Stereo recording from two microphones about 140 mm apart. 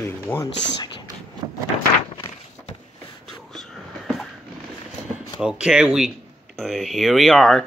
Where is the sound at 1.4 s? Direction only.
30° right (ahead or behind).